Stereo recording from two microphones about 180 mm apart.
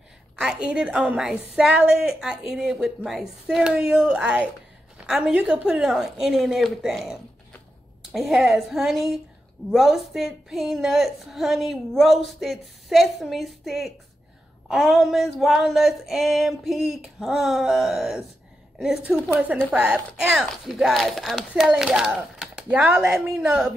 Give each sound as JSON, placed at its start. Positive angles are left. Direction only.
{"t": 0.4, "sound": "a woman's voice", "side_deg": -5}